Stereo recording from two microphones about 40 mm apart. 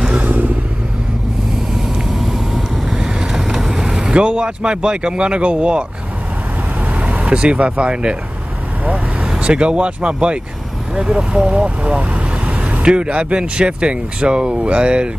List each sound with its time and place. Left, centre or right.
0.2 s vehicle: right
2.0 s vehicle: centre
4.0 s speech: right
6.9 s vehicle: right
7.2 s speech: right
8.8 s vehicle: right
9.4 s speech: right
12.8 s speech: right